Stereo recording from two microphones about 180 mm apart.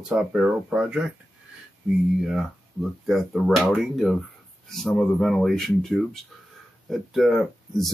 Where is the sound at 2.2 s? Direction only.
Centre (ahead or behind).